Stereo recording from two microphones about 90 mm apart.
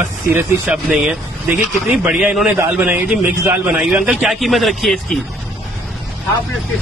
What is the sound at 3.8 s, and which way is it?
Speech, 5° right (ahead or behind).